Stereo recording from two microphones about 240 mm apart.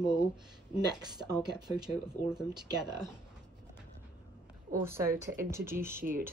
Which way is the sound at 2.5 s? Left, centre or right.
Centre.